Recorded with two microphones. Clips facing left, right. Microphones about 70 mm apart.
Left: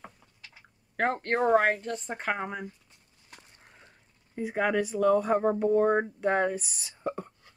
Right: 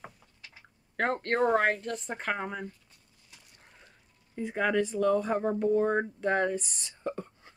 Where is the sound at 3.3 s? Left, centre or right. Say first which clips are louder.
Left 6 dB; left.